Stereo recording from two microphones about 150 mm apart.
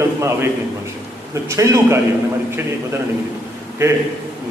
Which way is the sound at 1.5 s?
20° right (ahead or behind).